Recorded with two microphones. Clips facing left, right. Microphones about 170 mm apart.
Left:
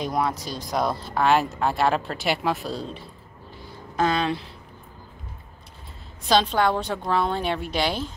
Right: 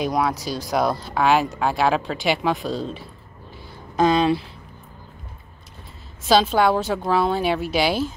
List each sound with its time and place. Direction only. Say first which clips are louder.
0.5 s speech: right 4 dB; 5° right (ahead or behind)
3.9 s a woman's voice: right 5 dB; 15° right (ahead or behind)
6.2 s a woman's voice: right 3 dB; 5° right (ahead or behind)